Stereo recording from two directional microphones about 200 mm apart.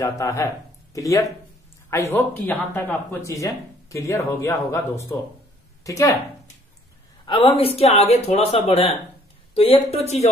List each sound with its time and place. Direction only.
0.0 s speech: 15° left (ahead or behind)
7.2 s speech: 25° left (ahead or behind)